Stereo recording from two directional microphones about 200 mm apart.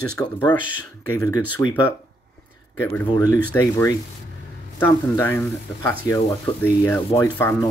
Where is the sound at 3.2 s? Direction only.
15° left (ahead or behind).